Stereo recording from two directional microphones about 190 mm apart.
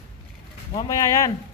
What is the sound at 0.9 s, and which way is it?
Speech, 15° left (ahead or behind).